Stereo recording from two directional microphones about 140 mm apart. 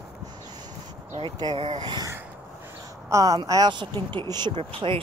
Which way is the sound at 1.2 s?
35° right (ahead or behind).